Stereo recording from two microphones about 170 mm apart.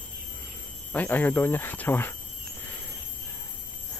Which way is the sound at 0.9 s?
10° left (ahead or behind).